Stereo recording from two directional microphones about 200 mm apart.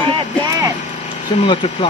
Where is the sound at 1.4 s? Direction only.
25° left (ahead or behind).